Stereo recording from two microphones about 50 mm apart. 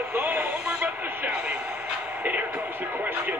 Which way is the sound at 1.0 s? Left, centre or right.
Right.